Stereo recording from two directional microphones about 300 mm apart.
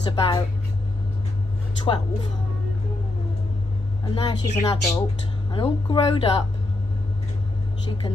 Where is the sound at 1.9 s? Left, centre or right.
Centre.